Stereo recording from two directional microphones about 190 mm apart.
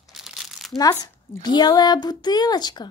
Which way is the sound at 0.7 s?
15° left (ahead or behind).